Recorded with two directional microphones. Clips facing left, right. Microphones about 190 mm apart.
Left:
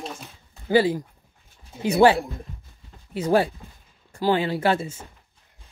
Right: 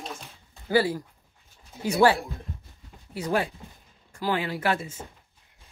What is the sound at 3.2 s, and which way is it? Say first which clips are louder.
Speech: left 6 dB; 30° left (ahead or behind).